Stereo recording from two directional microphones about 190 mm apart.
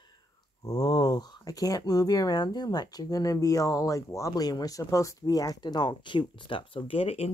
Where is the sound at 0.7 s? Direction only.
20° left (ahead or behind).